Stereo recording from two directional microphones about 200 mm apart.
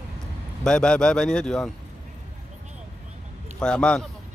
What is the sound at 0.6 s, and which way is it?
Speech, 5° left (ahead or behind).